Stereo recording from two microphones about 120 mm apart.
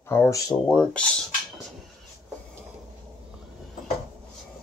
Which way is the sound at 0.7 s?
10° left (ahead or behind).